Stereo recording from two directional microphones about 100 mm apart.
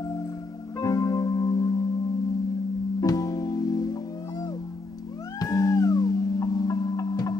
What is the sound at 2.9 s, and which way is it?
Music, 35° left (ahead or behind).